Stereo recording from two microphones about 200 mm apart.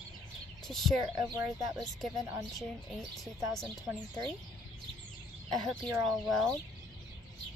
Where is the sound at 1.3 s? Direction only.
15° right (ahead or behind).